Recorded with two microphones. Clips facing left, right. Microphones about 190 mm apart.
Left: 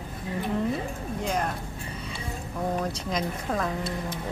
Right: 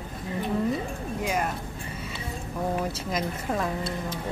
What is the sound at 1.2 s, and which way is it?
Speech, 5° right (ahead or behind).